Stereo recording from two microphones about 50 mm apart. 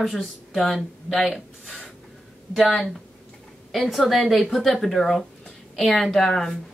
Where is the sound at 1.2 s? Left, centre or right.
Centre.